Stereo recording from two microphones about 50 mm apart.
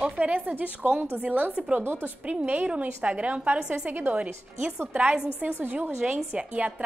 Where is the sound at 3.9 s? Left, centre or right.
Right.